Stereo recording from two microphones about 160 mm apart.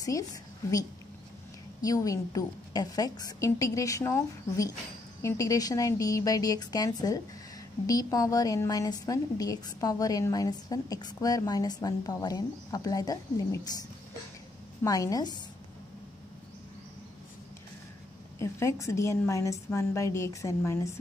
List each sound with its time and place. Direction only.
1.8 s a woman's voice: 20° left (ahead or behind)
18.4 s a woman's voice: 20° left (ahead or behind)